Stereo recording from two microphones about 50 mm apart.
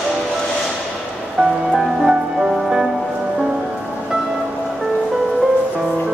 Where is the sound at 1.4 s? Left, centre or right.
Centre.